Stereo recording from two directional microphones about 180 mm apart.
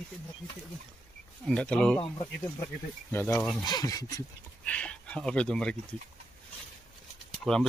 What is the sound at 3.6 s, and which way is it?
Speech, 20° left (ahead or behind).